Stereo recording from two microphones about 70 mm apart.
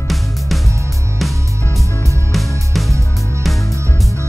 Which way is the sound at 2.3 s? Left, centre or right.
Centre.